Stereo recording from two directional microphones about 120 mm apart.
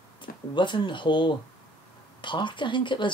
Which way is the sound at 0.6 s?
40° left (ahead or behind).